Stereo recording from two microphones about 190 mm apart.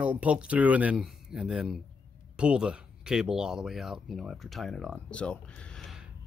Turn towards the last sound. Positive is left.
turn(degrees=0)  # may be behind; listen again after turning